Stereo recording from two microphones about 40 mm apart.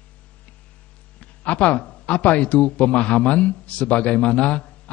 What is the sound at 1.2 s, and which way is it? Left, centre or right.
A man's voice, left.